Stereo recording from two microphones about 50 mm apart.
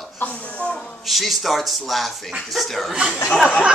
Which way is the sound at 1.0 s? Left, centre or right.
Centre.